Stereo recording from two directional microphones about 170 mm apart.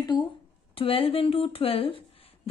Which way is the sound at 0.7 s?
35° left (ahead or behind).